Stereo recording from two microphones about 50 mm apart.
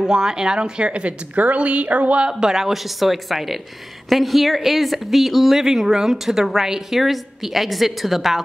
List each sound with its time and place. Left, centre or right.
0.0 s speech: centre
2.2 s speech: centre